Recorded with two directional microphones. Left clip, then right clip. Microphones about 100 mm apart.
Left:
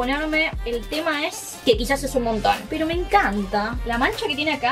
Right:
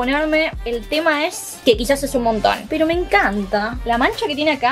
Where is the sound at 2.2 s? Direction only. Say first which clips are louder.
Right 4 dB; 25° right (ahead or behind).